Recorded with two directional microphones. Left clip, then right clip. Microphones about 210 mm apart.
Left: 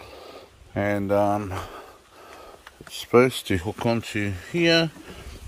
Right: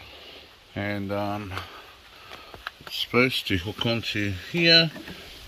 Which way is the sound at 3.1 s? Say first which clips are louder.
Left 4 dB; 25° left (ahead or behind).